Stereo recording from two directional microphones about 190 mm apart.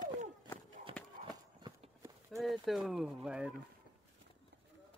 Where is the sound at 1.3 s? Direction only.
20° right (ahead or behind).